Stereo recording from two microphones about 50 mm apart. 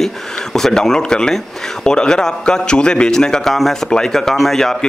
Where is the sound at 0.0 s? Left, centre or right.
Centre.